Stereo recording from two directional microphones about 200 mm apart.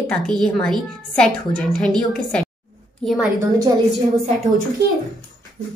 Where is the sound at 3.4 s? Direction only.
20° right (ahead or behind).